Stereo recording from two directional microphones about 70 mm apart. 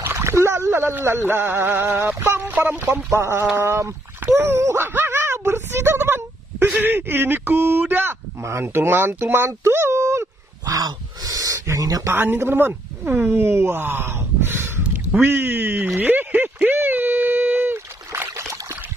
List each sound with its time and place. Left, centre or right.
0.1 s speech: right
2.4 s speech: right
3.1 s speech: right
10.6 s speech: right
12.1 s speech: right
16.6 s rowboat: right